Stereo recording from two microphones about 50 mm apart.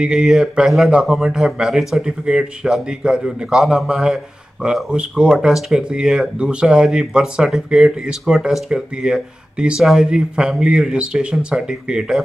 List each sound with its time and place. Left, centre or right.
0.0 s speech: centre
4.8 s speech: centre